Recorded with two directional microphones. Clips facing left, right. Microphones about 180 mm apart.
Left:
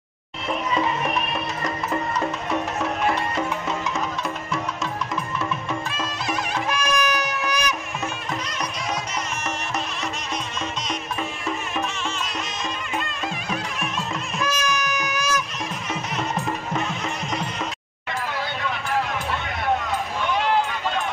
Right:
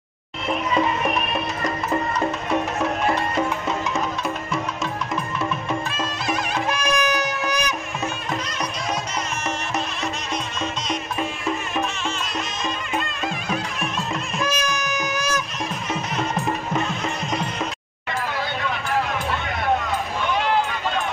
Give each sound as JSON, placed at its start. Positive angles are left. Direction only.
{"t": 6.7, "sound": "music", "side_deg": -25}
{"t": 14.4, "sound": "music", "side_deg": -25}